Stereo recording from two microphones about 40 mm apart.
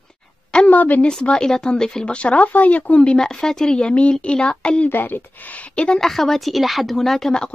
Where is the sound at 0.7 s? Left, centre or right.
Left.